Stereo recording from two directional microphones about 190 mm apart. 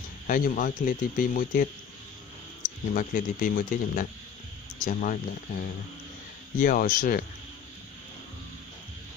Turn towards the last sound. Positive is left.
turn(degrees=50)  # may be behind; listen again after turning